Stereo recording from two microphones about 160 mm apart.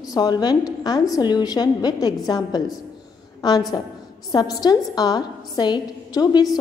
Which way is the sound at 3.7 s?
25° left (ahead or behind).